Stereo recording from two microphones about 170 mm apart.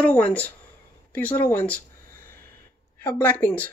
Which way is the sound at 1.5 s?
10° left (ahead or behind).